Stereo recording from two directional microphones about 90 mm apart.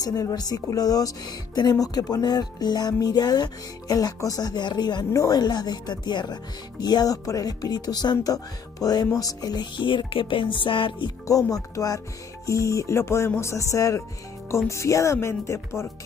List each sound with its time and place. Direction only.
0.0 s speech: 45° left (ahead or behind); by 11.1 s 60° left (ahead or behind)
11.2 s music: 40° left (ahead or behind)